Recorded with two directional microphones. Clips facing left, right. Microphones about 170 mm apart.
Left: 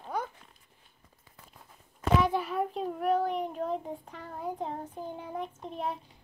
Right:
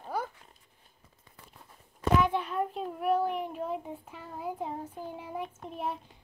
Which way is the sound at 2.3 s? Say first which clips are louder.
Left 1 dB; 5° left (ahead or behind).